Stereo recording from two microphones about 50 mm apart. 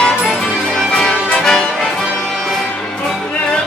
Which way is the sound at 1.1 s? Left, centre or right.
Left.